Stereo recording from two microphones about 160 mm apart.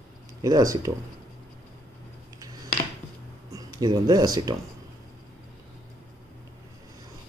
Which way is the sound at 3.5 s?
25° right (ahead or behind).